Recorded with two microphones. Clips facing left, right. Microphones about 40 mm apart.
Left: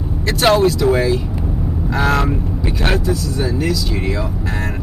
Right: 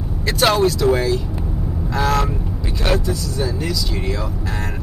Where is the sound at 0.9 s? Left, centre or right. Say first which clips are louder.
Left 3 dB; centre.